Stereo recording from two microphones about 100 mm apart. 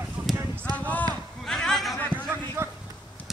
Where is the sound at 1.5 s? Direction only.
5° left (ahead or behind).